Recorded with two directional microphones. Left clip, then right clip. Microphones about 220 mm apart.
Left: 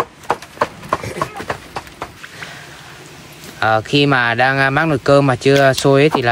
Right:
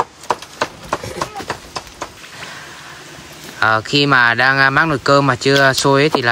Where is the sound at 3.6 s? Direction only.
5° right (ahead or behind).